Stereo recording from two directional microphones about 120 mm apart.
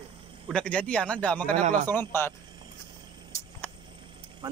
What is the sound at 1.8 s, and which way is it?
Speech, 20° left (ahead or behind).